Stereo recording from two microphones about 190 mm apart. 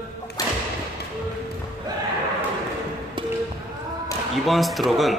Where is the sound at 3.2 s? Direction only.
25° right (ahead or behind).